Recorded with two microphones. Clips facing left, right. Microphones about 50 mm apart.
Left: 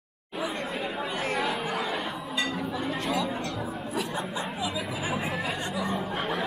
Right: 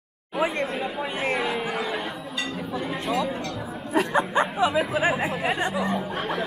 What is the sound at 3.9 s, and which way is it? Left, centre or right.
Speech, right.